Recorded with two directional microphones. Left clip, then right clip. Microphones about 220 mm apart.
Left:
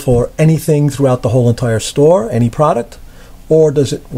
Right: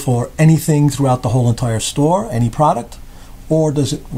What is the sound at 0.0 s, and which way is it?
Speech, 30° left (ahead or behind).